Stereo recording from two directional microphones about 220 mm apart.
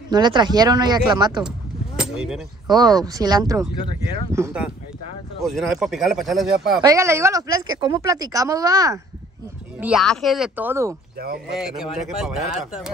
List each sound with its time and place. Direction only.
0.1 s speech: 20° right (ahead or behind)
2.0 s a sound: 5° right (ahead or behind)
2.7 s speech: 15° right (ahead or behind); by 6.8 s centre (ahead or behind)
6.8 s speech: 15° right (ahead or behind)
9.8 s speech: 5° right (ahead or behind)
11.1 s speech: 45° right (ahead or behind)
11.5 s speech: 5° right (ahead or behind)